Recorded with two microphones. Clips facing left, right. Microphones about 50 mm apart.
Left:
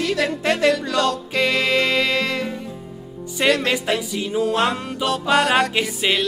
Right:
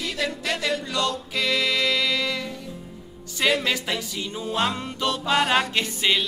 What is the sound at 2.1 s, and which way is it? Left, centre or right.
Music, left.